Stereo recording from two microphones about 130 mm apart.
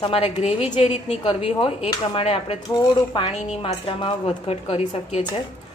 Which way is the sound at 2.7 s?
35° left (ahead or behind).